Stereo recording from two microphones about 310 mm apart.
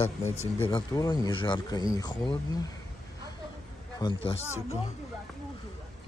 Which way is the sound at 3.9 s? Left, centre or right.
Centre.